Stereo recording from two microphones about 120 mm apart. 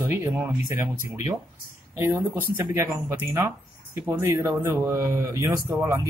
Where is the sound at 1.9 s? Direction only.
20° right (ahead or behind).